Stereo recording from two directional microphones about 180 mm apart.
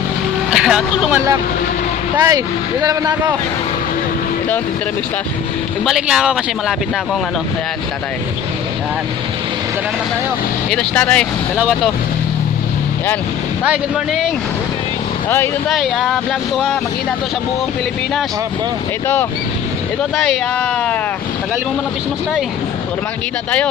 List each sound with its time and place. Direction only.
0.5 s speech: 5° right (ahead or behind)
2.1 s speech: 20° right (ahead or behind)
5.9 s speech: 5° right (ahead or behind)
10.7 s speech: 5° left (ahead or behind)
11.5 s speech: 5° right (ahead or behind)
13.7 s speech: centre (ahead or behind)
15.2 s speech: 10° left (ahead or behind)
15.7 s speech: centre (ahead or behind)